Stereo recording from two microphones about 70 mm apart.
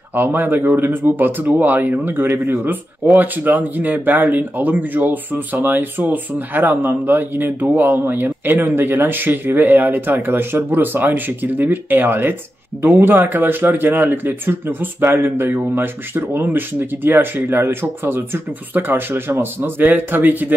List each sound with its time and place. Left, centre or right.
0.1 s speech: right